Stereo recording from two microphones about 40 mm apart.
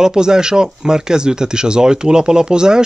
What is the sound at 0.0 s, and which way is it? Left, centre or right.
Speech, centre.